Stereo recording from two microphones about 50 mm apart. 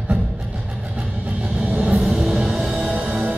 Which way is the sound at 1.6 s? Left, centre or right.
Right.